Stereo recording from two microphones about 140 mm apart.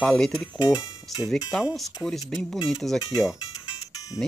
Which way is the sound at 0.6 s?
25° left (ahead or behind).